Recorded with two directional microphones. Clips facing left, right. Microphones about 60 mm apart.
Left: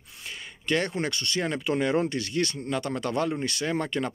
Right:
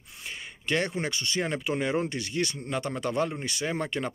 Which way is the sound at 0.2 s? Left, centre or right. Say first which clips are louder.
Even; centre.